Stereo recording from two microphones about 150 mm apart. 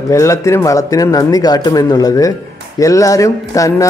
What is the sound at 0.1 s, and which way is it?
Speech, 20° left (ahead or behind).